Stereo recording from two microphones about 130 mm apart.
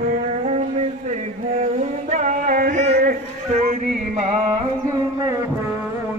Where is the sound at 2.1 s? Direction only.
70° right (ahead or behind).